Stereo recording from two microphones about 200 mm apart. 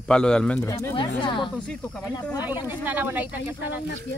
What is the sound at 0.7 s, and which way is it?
Speech, 15° left (ahead or behind).